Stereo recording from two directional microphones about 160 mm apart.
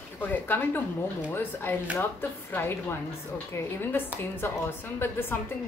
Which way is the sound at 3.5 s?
15° left (ahead or behind).